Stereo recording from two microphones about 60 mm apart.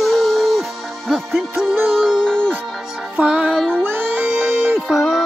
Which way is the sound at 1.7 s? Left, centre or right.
Right.